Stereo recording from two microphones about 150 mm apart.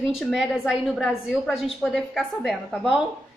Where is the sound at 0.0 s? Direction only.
5° right (ahead or behind).